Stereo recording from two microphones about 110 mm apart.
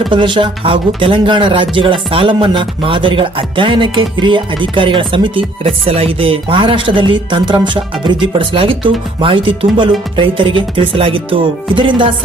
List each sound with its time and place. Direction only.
0.1 s speech: 45° right (ahead or behind)